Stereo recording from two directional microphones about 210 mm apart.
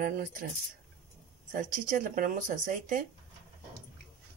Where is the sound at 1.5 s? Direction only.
40° right (ahead or behind).